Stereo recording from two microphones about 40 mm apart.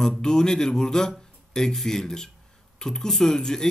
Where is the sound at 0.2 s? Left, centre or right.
Centre.